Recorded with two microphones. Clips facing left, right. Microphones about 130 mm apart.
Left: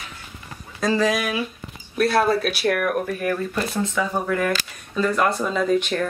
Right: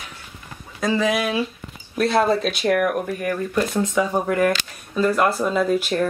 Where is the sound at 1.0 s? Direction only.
25° right (ahead or behind).